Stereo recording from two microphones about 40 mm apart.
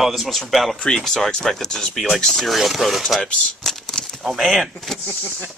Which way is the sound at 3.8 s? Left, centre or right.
Centre.